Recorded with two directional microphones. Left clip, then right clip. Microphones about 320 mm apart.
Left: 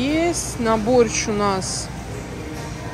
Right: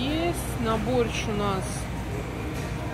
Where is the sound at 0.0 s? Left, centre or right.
Left.